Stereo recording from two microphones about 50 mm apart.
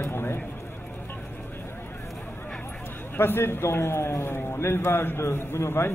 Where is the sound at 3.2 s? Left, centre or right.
Left.